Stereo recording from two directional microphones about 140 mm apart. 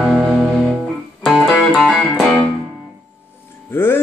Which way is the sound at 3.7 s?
15° left (ahead or behind).